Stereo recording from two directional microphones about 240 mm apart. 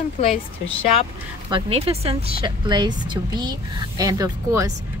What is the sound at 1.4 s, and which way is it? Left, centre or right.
Speech, right.